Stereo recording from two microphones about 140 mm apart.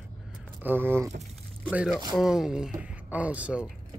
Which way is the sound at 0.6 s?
15° right (ahead or behind).